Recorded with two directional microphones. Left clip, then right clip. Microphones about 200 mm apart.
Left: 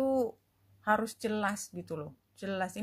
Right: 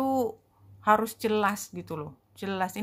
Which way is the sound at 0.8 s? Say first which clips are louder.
Right 7 dB; centre (ahead or behind).